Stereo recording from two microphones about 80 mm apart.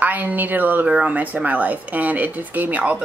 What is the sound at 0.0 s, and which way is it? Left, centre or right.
A woman's voice, right.